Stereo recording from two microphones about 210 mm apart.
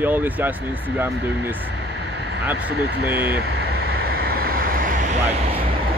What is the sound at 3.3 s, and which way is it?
Vehicle, 50° right (ahead or behind).